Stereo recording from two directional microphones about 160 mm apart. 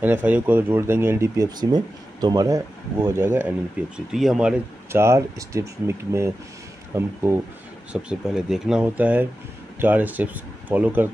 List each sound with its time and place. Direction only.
0.0 s speech: 10° right (ahead or behind)
4.9 s speech: 15° right (ahead or behind)
7.9 s speech: 5° right (ahead or behind)